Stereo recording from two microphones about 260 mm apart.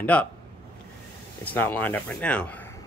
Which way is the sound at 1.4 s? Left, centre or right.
Centre.